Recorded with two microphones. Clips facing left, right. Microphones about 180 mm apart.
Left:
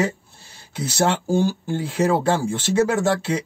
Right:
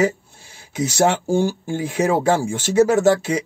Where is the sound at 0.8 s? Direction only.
15° right (ahead or behind).